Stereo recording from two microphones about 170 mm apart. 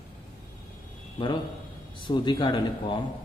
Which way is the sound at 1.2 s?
30° left (ahead or behind).